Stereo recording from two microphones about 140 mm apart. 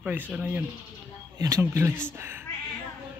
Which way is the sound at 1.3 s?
25° right (ahead or behind).